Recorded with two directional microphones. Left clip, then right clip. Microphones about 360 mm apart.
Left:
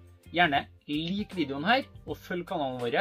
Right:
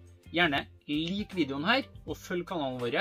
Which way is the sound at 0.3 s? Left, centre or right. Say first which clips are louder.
Left 3 dB; centre.